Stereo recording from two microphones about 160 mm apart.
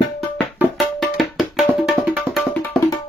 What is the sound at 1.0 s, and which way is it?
Music, centre (ahead or behind).